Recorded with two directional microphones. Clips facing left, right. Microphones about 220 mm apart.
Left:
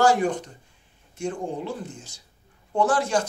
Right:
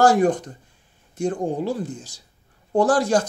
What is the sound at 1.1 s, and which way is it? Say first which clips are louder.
Speech: right 6 dB; 35° right (ahead or behind).